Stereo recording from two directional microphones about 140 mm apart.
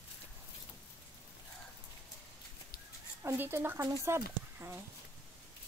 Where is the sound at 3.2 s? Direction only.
15° right (ahead or behind).